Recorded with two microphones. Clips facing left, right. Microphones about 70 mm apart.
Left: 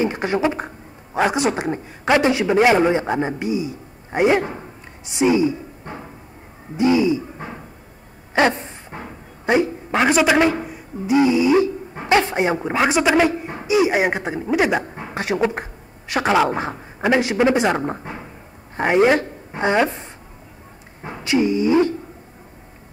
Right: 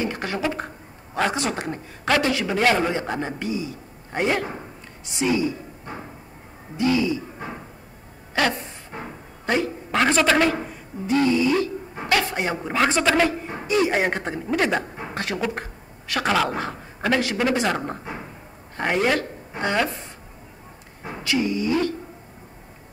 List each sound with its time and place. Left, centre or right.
0.0 s a man's voice: left
6.8 s a man's voice: left
8.4 s a sound: left
9.5 s a man's voice: centre
21.0 s dog: left